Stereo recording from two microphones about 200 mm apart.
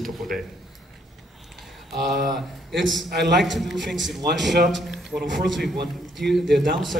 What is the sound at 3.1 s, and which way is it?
Speech, 55° right (ahead or behind).